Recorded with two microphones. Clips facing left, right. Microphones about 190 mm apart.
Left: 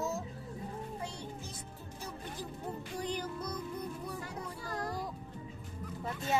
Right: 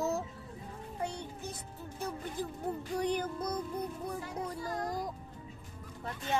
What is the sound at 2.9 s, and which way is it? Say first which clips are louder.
Music: right 5 dB; 60° right (ahead or behind).